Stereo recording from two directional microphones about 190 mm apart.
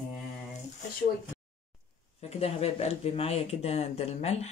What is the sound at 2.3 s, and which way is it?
Speech, 35° left (ahead or behind).